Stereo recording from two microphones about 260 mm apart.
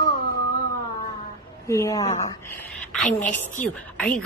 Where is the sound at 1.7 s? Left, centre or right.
Centre.